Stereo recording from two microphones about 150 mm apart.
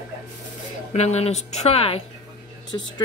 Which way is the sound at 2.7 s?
25° left (ahead or behind).